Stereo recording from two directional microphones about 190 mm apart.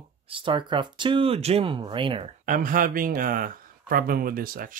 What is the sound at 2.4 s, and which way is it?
Speech, 45° right (ahead or behind).